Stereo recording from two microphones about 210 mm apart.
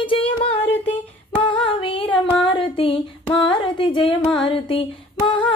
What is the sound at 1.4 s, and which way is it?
Female singing, 25° left (ahead or behind).